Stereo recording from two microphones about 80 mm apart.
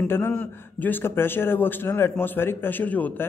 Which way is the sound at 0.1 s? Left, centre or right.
Left.